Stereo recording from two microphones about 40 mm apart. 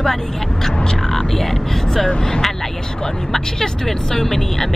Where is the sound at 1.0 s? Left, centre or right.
Centre.